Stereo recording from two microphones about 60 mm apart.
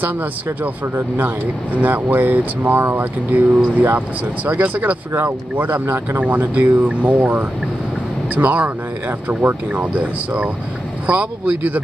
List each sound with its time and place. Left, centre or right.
0.9 s speech: right
5.2 s speech: right